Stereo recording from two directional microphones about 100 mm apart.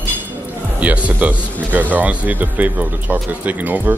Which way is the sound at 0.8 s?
15° right (ahead or behind).